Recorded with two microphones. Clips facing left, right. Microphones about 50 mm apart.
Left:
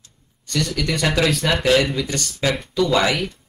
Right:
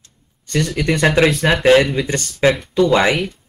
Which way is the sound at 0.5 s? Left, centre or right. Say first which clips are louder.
Right 4 dB; right.